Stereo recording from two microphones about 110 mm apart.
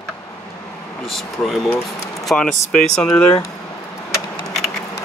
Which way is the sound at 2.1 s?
5° left (ahead or behind).